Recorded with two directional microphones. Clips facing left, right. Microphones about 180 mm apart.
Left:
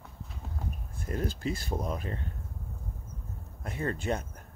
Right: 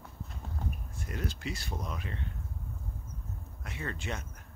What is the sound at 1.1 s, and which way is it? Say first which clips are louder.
Speech: left 6 dB; 35° left (ahead or behind).